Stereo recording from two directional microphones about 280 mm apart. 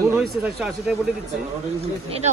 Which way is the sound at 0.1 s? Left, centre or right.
Centre.